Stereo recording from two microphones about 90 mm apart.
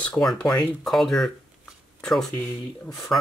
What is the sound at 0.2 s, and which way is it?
Speech, 5° left (ahead or behind).